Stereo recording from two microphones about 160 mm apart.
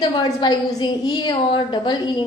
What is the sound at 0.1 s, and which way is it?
A woman's voice, 30° left (ahead or behind).